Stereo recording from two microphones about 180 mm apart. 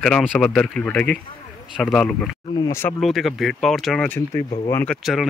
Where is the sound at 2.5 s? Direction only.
15° left (ahead or behind).